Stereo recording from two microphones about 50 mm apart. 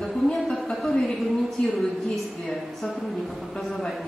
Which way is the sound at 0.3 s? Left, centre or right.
Centre.